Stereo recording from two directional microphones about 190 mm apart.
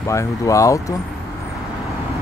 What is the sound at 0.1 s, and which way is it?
Speech, 15° left (ahead or behind).